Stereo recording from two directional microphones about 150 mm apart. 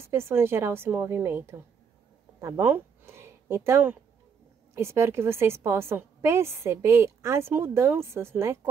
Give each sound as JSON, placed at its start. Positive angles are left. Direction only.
{"t": 0.0, "sound": "a woman's voice", "side_deg": -15}